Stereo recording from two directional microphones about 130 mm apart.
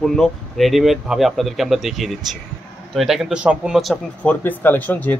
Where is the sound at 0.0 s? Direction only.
5° left (ahead or behind).